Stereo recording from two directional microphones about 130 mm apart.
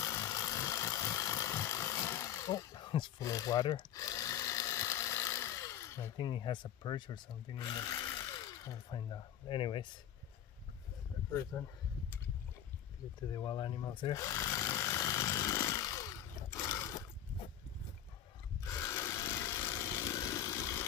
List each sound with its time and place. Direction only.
0.0 s vehicle: 25° left (ahead or behind)
3.3 s sewing machine: 25° left (ahead or behind)
6.1 s speech: 35° left (ahead or behind)
7.6 s tools: 30° left (ahead or behind)
8.9 s speech: 40° left (ahead or behind)
11.5 s speech: 25° left (ahead or behind)
13.3 s a sound: 35° left (ahead or behind)
18.6 s sewing machine: 20° left (ahead or behind)